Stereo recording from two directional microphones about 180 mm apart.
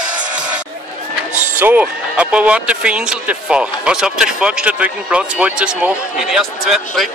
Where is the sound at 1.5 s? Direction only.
10° right (ahead or behind).